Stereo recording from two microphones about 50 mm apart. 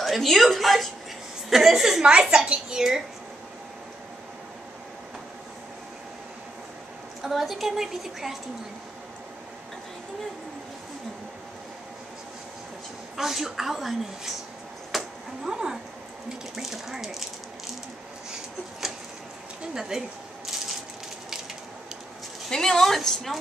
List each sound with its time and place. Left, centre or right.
0.0 s a woman's voice: centre
2.1 s a woman's voice: centre
7.2 s a woman's voice: centre
13.1 s a woman's voice: centre
14.9 s a sound: centre
15.4 s a woman's voice: centre
19.7 s a woman's voice: centre
22.5 s a woman's voice: centre